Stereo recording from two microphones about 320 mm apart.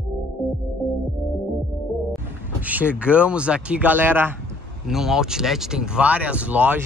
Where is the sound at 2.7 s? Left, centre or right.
Centre.